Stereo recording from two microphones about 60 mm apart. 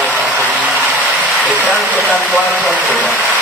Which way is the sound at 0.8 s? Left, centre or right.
Centre.